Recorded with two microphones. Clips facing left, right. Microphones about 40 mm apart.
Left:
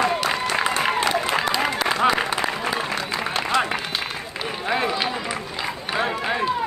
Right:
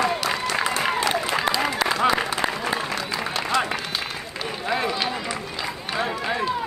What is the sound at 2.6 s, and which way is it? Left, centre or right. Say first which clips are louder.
Run: left 1 dB; left.